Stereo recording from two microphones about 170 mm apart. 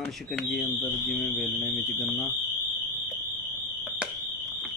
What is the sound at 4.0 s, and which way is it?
Fire alarm, centre (ahead or behind).